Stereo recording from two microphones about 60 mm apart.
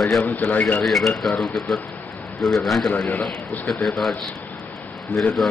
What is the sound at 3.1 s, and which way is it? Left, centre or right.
Speech, left.